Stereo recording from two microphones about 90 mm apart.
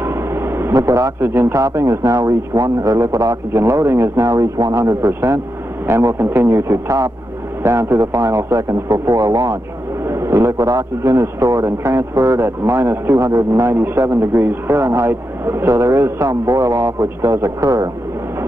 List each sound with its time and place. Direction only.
0.0 s vehicle: 30° right (ahead or behind)
1.2 s a man's voice: 25° right (ahead or behind)